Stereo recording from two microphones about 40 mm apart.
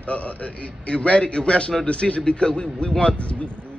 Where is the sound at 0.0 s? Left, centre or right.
Left.